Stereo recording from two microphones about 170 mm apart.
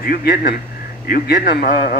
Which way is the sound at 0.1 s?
70° left (ahead or behind).